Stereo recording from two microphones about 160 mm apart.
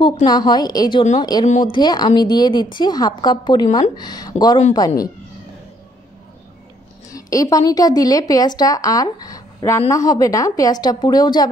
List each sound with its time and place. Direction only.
0.0 s a woman's voice: 25° left (ahead or behind)
1.4 s speech: 45° left (ahead or behind)
1.7 s a woman's voice: 25° left (ahead or behind)
7.1 s a woman's voice: 20° left (ahead or behind)